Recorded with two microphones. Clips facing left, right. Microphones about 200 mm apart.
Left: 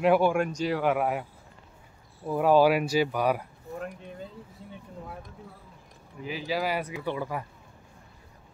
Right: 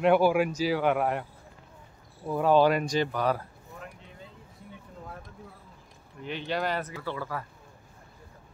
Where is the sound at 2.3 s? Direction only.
5° left (ahead or behind).